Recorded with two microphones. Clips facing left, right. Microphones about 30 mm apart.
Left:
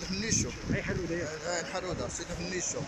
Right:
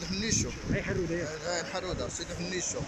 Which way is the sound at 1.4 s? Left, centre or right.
Centre.